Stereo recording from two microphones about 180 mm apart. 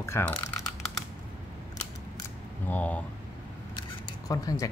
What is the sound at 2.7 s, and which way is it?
Speech, 10° left (ahead or behind).